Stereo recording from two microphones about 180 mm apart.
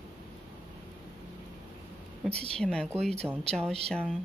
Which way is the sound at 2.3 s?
35° right (ahead or behind).